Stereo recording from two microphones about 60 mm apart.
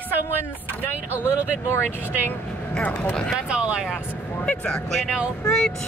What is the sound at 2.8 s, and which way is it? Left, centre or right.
Speech, left.